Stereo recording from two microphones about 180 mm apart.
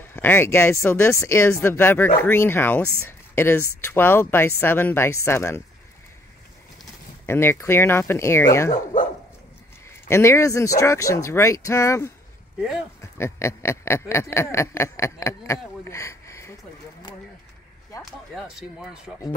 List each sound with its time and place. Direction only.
0.1 s speech: 10° left (ahead or behind)
7.2 s speech: 15° left (ahead or behind)
10.0 s speech: 15° left (ahead or behind)
12.5 s speech: centre (ahead or behind)
13.0 s a sound: 15° left (ahead or behind)
18.3 s speech: centre (ahead or behind)